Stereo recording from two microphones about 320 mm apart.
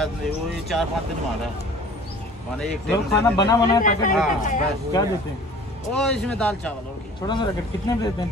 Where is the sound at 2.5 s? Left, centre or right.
Centre.